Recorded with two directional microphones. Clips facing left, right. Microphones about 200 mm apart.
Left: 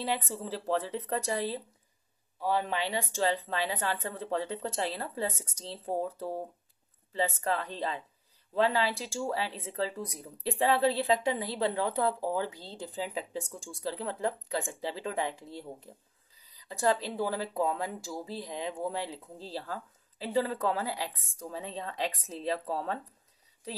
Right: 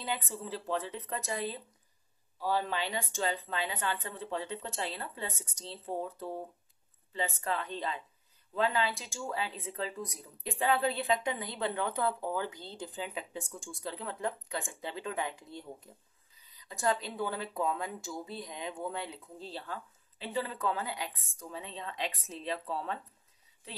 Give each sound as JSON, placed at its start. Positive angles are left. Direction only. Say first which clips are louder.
{"t": 0.0, "sound": "speech", "louder": "left 4 dB", "side_deg": 35}
{"t": 2.4, "sound": "speech", "louder": "left 2 dB", "side_deg": 20}